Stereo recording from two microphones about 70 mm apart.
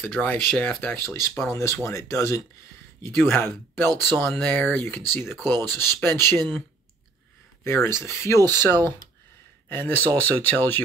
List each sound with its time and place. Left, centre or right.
0.0 s speech: left
3.2 s speech: left
7.6 s speech: left